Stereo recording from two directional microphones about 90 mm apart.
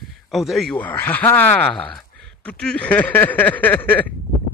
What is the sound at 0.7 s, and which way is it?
Speech, 20° left (ahead or behind).